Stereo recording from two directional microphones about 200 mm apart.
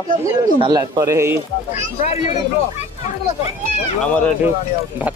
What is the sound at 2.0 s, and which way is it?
Speech, 35° left (ahead or behind).